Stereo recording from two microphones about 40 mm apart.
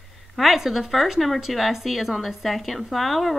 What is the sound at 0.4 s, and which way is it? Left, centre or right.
Speech, centre.